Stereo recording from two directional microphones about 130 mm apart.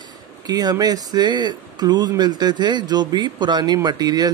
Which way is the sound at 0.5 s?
30° right (ahead or behind).